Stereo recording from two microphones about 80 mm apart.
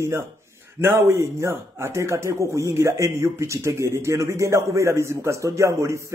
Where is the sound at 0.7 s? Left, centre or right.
Right.